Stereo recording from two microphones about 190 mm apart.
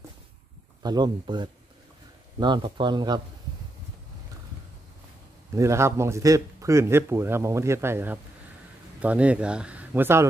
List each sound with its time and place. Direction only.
0.8 s speech: 20° right (ahead or behind)
5.5 s speech: 15° right (ahead or behind)